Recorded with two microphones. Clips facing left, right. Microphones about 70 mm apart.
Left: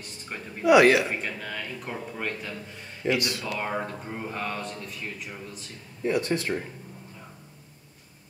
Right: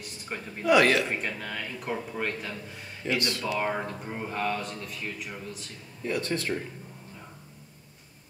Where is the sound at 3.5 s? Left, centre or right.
Centre.